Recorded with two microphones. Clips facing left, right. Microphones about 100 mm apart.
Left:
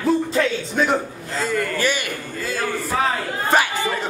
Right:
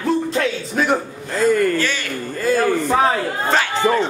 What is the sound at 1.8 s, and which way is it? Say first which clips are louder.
Speech: left 1 dB; 15° left (ahead or behind).